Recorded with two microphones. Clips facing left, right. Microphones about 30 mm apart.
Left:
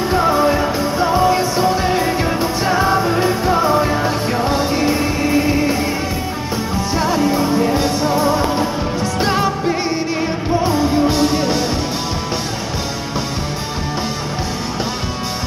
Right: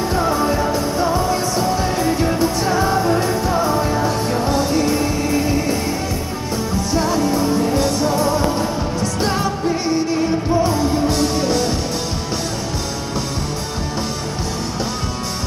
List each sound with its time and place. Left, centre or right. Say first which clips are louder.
0.1 s music: left 5 dB; left
6.9 s music: left 2 dB; centre